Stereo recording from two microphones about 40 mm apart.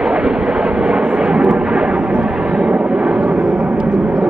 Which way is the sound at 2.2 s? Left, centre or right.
Centre.